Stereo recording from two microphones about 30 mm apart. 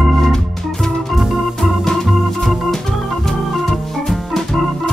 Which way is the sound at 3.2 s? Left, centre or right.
Centre.